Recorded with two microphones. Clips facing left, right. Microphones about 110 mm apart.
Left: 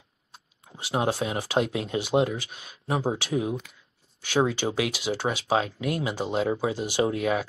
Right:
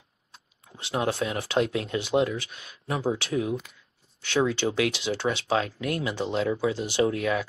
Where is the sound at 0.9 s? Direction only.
30° left (ahead or behind).